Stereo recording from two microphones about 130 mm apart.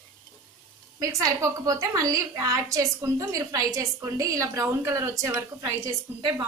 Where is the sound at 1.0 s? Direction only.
25° right (ahead or behind).